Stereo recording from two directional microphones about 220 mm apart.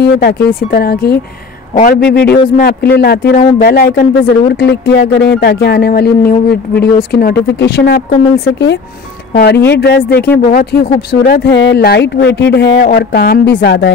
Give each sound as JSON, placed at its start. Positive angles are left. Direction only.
{"t": 0.0, "sound": "speech", "side_deg": 45}
{"t": 9.3, "sound": "speech", "side_deg": 50}